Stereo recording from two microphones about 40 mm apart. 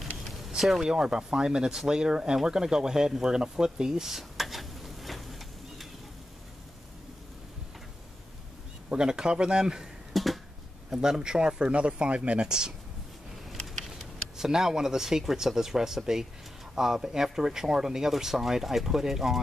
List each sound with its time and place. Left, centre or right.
0.6 s speech: centre
4.1 s a sound: centre
8.9 s speech: centre
10.1 s finger snapping: centre
10.9 s speech: centre
14.3 s speech: centre